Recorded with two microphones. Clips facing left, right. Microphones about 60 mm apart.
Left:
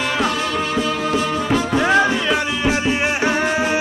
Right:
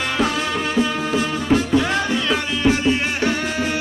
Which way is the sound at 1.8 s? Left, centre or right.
Left.